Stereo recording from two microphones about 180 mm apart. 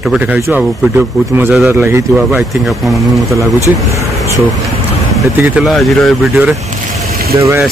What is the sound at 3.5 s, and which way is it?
Speech, 15° left (ahead or behind).